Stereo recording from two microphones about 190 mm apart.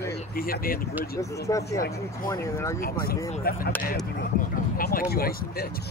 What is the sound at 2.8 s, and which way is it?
Speech, 50° left (ahead or behind).